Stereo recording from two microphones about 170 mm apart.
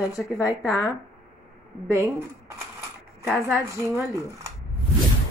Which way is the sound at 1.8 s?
15° right (ahead or behind).